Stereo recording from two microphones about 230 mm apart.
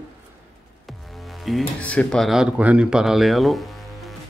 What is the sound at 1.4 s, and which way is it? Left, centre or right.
Speech, centre.